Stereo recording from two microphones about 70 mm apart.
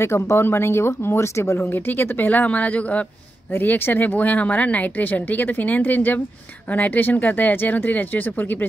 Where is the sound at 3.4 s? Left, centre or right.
Left.